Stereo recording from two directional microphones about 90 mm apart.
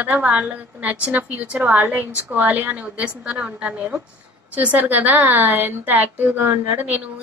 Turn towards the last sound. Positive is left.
turn(degrees=-20)  # may be behind; listen again after turning